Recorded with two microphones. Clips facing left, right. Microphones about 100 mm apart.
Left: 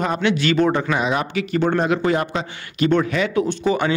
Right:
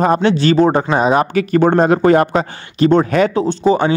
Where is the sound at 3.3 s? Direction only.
30° right (ahead or behind).